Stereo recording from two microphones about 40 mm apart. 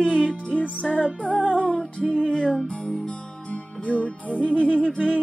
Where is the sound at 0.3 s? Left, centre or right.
Left.